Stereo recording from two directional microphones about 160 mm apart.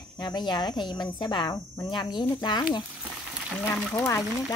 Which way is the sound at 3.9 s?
20° left (ahead or behind).